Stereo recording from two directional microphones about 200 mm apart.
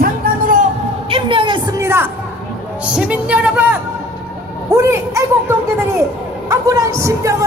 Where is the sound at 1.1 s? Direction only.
25° right (ahead or behind).